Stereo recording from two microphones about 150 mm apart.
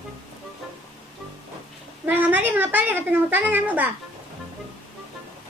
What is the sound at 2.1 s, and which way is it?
A woman's voice, 10° right (ahead or behind).